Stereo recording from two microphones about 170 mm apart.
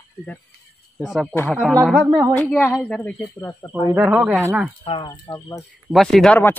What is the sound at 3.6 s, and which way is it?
Speech, 25° left (ahead or behind).